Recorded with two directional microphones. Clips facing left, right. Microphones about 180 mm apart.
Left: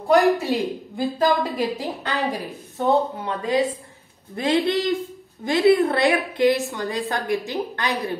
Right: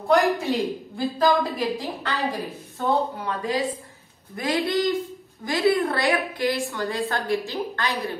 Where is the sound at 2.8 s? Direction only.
25° left (ahead or behind).